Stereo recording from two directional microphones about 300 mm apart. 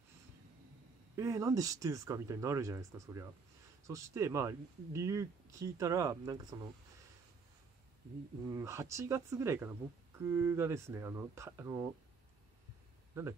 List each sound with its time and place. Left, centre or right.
1.1 s speech: centre
8.5 s speech: centre
13.2 s speech: centre